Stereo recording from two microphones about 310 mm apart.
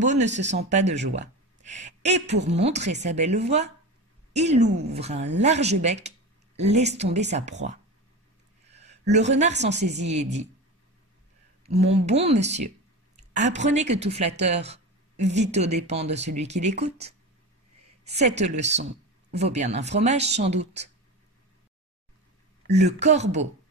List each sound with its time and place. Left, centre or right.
0.0 s a woman's voice: right
0.3 s a woman's voice: right
0.6 s a woman's voice: right
8.6 s a sound: right
9.1 s a woman's voice: right
9.5 s a woman's voice: right
10.0 s a woman's voice: right
11.6 s a woman's voice: centre
18.4 s a woman's voice: right
22.7 s a woman's voice: right